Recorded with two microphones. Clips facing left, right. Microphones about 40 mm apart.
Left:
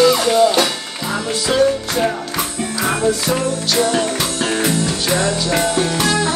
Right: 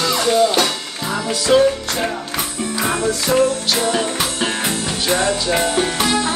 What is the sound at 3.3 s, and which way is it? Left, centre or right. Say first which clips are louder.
Music: right 3 dB; centre.